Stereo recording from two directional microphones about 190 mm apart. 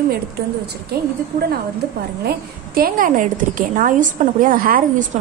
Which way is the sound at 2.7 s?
50° right (ahead or behind).